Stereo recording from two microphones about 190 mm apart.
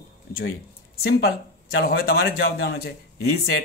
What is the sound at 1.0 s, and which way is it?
Speech, 55° left (ahead or behind).